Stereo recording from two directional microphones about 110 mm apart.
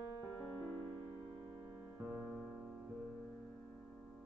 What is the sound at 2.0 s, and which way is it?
Music, 10° right (ahead or behind).